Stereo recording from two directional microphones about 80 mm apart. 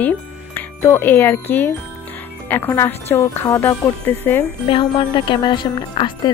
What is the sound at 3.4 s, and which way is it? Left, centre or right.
Speech, left.